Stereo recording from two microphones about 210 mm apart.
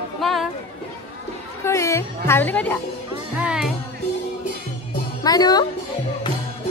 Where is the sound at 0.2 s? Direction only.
Centre (ahead or behind).